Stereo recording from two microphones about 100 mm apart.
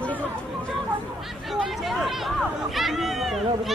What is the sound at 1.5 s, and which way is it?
Chatter, centre (ahead or behind).